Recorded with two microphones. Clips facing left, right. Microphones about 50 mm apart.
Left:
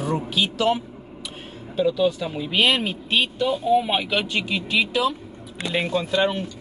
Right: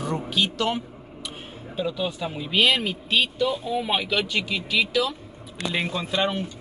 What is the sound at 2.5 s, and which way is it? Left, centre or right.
Speech, centre.